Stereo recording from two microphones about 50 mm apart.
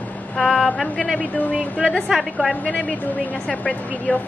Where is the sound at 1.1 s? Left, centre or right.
Left.